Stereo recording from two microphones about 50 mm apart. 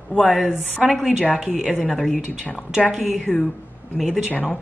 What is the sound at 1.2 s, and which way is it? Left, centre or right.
Speech, centre.